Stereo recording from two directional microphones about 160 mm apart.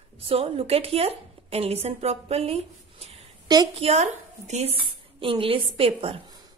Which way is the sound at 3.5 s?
25° right (ahead or behind).